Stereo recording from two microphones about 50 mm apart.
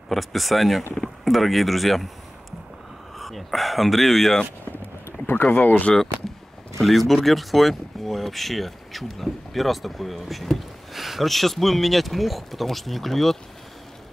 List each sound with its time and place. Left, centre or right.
0.1 s speech: centre
3.2 s speech: centre
5.2 s speech: left
6.8 s speech: centre